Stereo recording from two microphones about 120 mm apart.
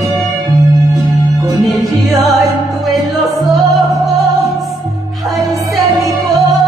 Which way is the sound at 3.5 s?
Centre (ahead or behind).